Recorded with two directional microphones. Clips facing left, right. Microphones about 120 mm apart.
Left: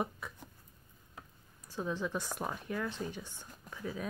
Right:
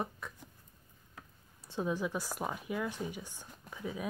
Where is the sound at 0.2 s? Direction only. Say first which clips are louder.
Even; 5° left (ahead or behind).